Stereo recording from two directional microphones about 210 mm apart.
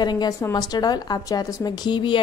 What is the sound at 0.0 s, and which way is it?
A woman's voice, 20° left (ahead or behind).